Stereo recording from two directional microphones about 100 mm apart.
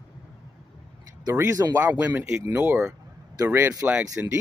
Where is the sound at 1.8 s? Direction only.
15° right (ahead or behind).